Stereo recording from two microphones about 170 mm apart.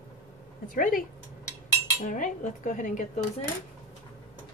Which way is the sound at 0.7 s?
55° left (ahead or behind).